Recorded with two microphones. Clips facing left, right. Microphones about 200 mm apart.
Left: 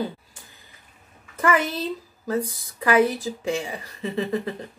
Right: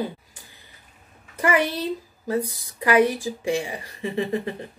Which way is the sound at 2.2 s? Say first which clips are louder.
Even; 15° right (ahead or behind).